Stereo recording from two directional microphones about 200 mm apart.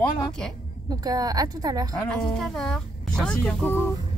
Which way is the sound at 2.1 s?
Centre (ahead or behind).